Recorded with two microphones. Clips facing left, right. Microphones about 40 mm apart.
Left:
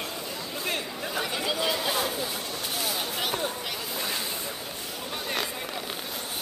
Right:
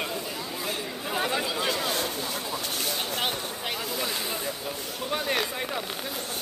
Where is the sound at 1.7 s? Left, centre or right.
Centre.